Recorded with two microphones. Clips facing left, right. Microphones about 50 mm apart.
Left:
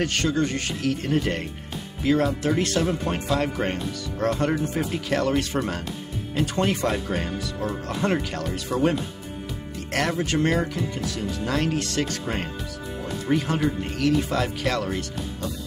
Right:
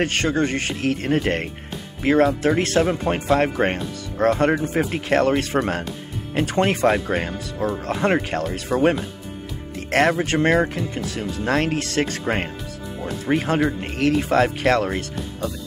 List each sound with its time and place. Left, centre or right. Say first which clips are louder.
0.0 s speech: right 3 dB; right